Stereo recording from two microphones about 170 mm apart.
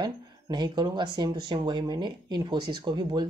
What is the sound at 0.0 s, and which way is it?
Speech, 25° right (ahead or behind).